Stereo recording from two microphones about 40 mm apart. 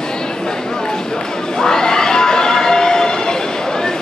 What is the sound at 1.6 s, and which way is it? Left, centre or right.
Neigh, centre.